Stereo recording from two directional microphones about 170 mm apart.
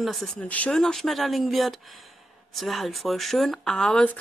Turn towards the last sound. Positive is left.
turn(degrees=5)  # may be behind; listen again after turning